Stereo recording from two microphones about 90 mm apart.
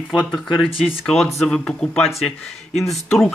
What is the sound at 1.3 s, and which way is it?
Speech, 5° left (ahead or behind).